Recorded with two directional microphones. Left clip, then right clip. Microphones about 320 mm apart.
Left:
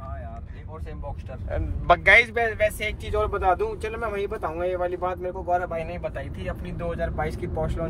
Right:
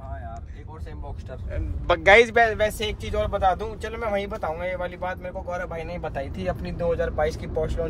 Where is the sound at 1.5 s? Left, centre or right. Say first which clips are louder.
Left 4 dB; centre.